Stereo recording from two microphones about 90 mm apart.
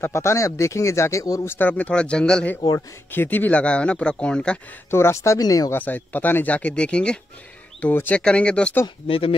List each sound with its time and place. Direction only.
0.0 s speech: 30° left (ahead or behind)
1.6 s speech: 15° left (ahead or behind)
3.1 s speech: 20° left (ahead or behind)
4.9 s speech: 30° left (ahead or behind)
5.7 s speech: 20° left (ahead or behind)
9.0 s speech: 90° left